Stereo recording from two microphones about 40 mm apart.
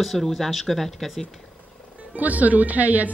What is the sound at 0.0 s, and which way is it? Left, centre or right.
Speech, centre.